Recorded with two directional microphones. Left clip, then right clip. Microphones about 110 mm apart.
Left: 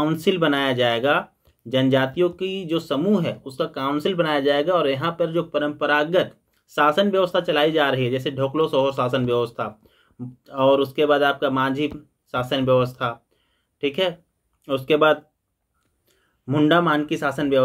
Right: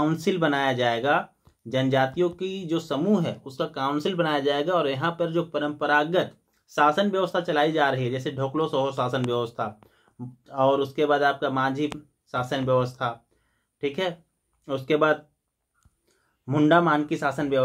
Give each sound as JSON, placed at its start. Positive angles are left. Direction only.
{"t": 0.0, "sound": "speech", "side_deg": 20}
{"t": 16.4, "sound": "speech", "side_deg": 25}